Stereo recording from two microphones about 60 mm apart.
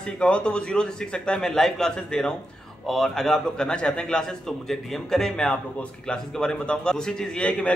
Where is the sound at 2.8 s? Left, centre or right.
Centre.